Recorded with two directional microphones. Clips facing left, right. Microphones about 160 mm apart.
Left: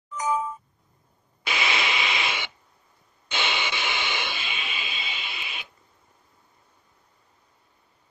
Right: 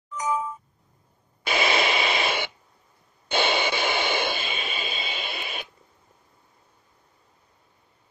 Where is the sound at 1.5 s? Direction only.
40° right (ahead or behind).